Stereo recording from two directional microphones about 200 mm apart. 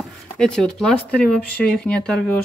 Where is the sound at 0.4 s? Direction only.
5° left (ahead or behind).